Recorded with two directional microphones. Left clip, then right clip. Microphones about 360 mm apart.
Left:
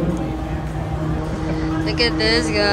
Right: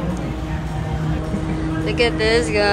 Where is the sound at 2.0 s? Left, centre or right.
Centre.